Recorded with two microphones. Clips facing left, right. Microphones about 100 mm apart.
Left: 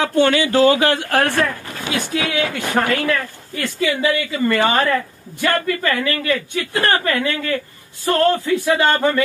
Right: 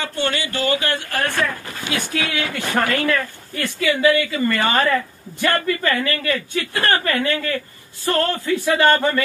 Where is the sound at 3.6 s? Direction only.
25° left (ahead or behind).